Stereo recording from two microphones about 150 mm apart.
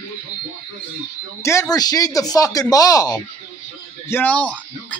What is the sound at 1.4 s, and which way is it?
Speech, 20° left (ahead or behind).